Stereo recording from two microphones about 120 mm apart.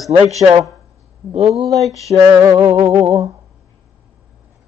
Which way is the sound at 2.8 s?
20° right (ahead or behind).